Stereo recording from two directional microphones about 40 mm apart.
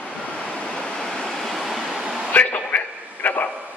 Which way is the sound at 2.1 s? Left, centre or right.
Right.